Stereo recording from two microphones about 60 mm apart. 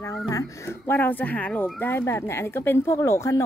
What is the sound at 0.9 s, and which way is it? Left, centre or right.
Speech, left.